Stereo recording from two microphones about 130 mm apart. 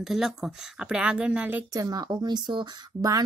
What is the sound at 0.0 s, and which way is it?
A woman's voice, 5° right (ahead or behind).